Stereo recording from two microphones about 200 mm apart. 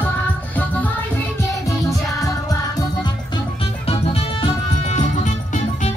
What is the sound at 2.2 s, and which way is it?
Music, 20° left (ahead or behind).